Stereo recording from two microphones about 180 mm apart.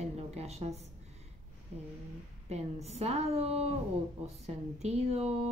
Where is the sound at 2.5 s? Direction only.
35° right (ahead or behind).